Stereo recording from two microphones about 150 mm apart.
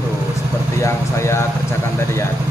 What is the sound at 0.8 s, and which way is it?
Speech, 20° left (ahead or behind).